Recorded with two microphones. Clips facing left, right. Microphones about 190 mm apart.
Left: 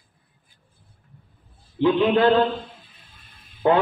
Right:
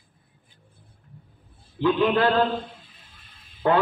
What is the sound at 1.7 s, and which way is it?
Speech, 20° left (ahead or behind).